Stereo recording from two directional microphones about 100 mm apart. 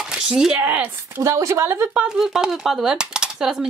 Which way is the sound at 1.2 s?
30° right (ahead or behind).